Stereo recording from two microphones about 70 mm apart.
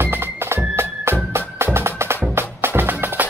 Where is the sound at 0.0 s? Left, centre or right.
Right.